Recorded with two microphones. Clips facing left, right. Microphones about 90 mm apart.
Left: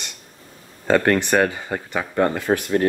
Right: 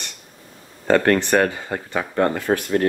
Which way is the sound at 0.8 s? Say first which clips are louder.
Right 1 dB; 10° left (ahead or behind).